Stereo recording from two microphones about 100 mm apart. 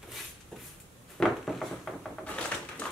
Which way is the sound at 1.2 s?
5° left (ahead or behind).